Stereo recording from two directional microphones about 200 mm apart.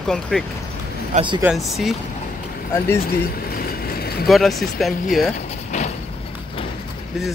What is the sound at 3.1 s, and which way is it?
Vehicle, 50° left (ahead or behind).